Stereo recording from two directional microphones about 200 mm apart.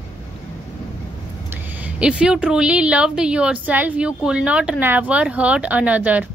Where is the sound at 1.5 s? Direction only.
10° right (ahead or behind).